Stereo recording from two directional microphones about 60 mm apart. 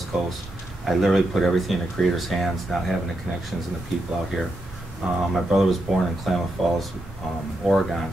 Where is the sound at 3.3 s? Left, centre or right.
Centre.